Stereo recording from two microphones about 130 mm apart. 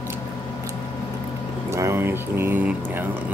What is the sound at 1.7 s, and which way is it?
Music, 20° right (ahead or behind).